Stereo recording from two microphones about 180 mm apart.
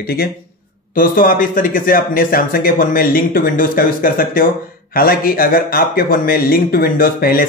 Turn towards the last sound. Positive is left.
turn(degrees=55)  # may be behind; listen again after turning